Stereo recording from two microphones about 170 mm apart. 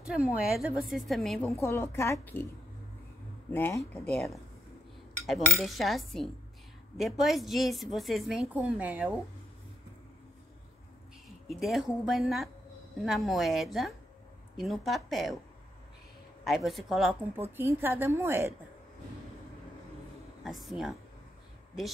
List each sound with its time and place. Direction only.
0.0 s a woman's voice: 5° right (ahead or behind)
1.5 s a woman's voice: 15° left (ahead or behind)
3.5 s a woman's voice: 10° left (ahead or behind)
5.6 s a woman's voice: centre (ahead or behind)
11.2 s a woman's voice: centre (ahead or behind)
16.4 s a woman's voice: centre (ahead or behind)
20.4 s a woman's voice: centre (ahead or behind)